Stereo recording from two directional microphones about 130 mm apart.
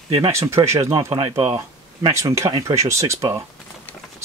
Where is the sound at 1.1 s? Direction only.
45° right (ahead or behind).